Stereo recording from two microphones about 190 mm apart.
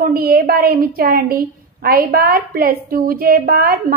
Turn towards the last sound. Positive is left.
turn(degrees=-50)  # may be behind; listen again after turning